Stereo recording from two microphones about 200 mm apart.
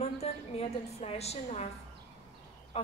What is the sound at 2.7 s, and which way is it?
Speech, 30° left (ahead or behind).